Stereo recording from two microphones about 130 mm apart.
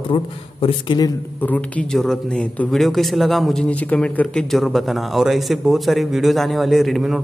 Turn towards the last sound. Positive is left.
turn(degrees=0)  # may be behind; listen again after turning